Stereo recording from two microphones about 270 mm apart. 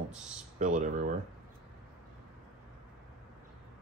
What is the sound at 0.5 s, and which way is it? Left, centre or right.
Speech, right.